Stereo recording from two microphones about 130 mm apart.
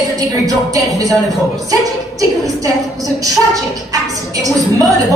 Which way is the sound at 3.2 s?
25° right (ahead or behind).